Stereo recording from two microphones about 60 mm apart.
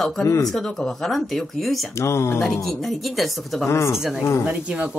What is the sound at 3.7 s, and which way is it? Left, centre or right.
Speech, left.